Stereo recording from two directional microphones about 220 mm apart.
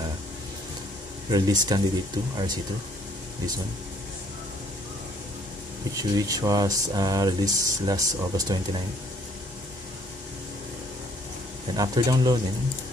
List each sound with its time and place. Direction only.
1.3 s speech: 20° right (ahead or behind)
5.9 s speech: 15° right (ahead or behind)
11.7 s speech: 15° right (ahead or behind)